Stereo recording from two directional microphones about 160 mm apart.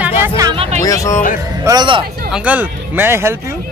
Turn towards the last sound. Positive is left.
turn(degrees=-15)  # may be behind; listen again after turning